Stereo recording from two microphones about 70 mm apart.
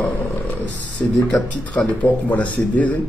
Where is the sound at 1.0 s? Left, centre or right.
Left.